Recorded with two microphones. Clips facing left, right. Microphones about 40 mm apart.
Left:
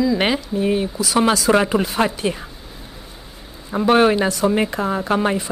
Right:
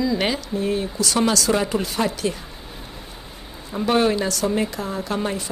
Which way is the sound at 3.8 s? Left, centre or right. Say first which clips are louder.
Left 5 dB; left.